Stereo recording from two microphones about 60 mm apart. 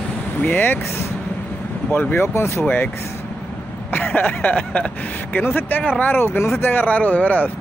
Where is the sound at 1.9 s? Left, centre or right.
Left.